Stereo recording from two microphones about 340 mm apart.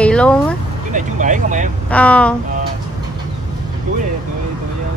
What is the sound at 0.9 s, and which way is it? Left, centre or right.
Speech, right.